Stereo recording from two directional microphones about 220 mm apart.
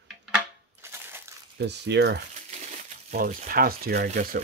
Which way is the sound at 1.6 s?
50° right (ahead or behind).